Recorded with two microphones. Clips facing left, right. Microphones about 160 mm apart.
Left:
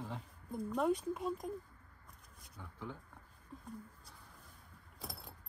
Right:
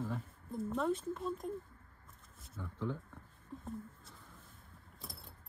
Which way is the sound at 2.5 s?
15° left (ahead or behind).